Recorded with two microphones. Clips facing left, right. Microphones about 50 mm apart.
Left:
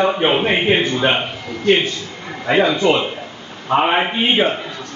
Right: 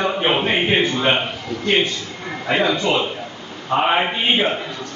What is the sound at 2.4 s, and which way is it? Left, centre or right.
A man's voice, centre.